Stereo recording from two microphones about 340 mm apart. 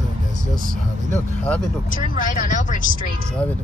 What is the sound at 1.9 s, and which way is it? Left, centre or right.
Speech, left.